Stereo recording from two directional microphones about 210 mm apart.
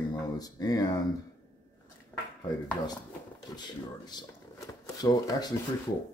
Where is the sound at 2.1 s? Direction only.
10° left (ahead or behind).